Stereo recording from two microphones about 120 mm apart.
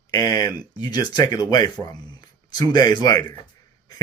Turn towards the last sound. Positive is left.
turn(degrees=35)  # may be behind; listen again after turning